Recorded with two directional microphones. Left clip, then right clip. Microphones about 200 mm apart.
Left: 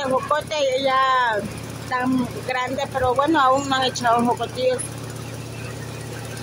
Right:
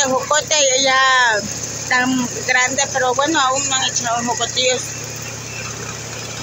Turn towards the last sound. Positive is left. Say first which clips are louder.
# right 3 dB
turn(degrees=15)  # may be behind; listen again after turning